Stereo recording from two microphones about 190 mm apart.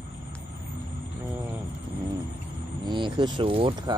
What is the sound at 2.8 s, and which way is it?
Speech, 25° right (ahead or behind).